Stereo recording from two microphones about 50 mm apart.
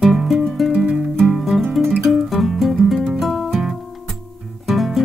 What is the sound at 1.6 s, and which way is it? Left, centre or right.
Guitar, centre.